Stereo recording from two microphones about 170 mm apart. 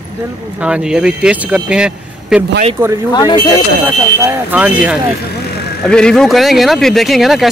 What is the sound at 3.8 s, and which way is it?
Speech, 10° right (ahead or behind).